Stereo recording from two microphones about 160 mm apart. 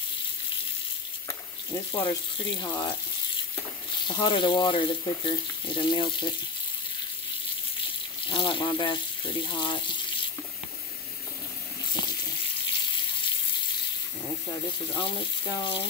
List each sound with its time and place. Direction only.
2.0 s speech: 30° left (ahead or behind)
4.1 s speech: 30° left (ahead or behind)
8.3 s speech: 30° left (ahead or behind)
15.0 s speech: 30° left (ahead or behind)